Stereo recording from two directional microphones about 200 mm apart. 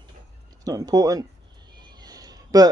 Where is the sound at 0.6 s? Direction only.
20° right (ahead or behind).